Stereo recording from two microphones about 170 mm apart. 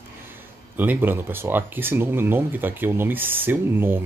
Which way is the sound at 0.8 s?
10° right (ahead or behind).